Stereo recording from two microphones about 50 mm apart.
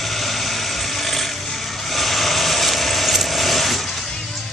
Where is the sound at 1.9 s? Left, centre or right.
Centre.